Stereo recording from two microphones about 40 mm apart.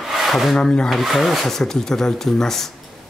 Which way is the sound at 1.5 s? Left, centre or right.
Centre.